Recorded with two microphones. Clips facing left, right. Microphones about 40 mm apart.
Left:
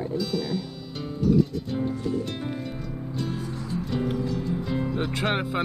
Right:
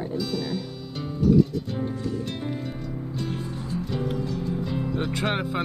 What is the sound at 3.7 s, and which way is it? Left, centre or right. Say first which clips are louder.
Music: left 1 dB; centre.